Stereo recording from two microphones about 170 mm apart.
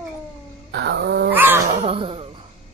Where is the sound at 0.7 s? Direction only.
85° right.